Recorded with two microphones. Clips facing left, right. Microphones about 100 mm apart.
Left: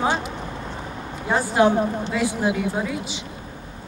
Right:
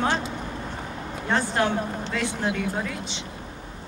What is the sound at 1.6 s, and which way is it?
Speech, 25° left (ahead or behind).